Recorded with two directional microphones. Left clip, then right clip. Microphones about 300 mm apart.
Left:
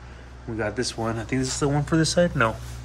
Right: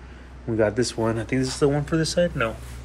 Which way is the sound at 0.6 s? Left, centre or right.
Centre.